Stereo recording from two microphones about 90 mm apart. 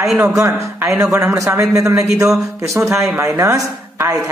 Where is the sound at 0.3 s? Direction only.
35° right (ahead or behind).